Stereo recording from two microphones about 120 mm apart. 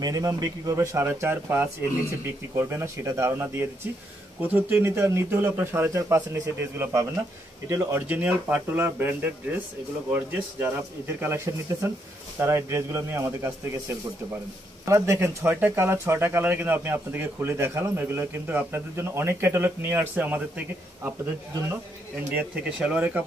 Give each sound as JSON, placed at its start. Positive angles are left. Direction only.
{"t": 0.0, "sound": "a man's voice", "side_deg": -30}
{"t": 22.3, "sound": "speech", "side_deg": -10}